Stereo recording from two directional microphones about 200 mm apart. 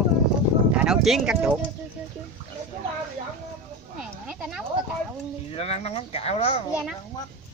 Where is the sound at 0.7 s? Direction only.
5° right (ahead or behind).